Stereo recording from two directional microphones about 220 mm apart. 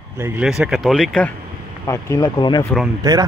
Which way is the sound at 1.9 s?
15° left (ahead or behind).